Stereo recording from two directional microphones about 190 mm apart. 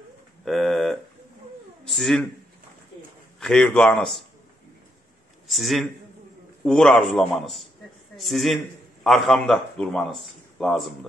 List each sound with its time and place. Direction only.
0.5 s speech: centre (ahead or behind)
3.3 s a man's voice: 5° left (ahead or behind)
5.5 s a man's voice: centre (ahead or behind)